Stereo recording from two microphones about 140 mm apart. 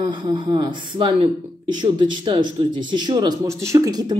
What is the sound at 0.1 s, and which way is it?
Speech, 35° right (ahead or behind).